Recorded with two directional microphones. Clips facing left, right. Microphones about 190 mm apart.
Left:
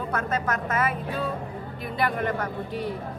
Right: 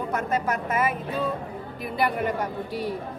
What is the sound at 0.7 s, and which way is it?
A woman's voice, 5° right (ahead or behind).